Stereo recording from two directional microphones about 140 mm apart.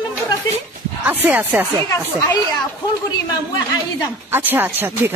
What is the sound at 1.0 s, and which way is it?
Speech, 15° right (ahead or behind).